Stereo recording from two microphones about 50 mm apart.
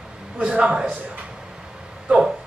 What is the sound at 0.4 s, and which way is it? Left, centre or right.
Speech, centre.